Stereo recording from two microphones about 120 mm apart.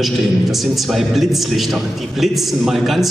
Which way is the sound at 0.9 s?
Centre (ahead or behind).